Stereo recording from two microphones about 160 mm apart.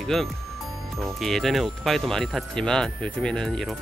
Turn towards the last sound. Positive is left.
turn(degrees=5)  # may be behind; listen again after turning